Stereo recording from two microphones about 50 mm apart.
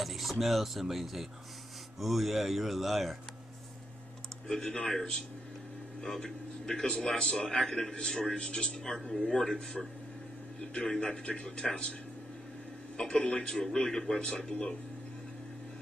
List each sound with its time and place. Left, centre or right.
0.0 s speech: centre
4.5 s a man's voice: centre
12.9 s a man's voice: centre